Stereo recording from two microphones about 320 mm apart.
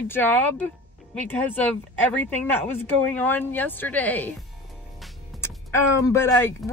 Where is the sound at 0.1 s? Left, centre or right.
Centre.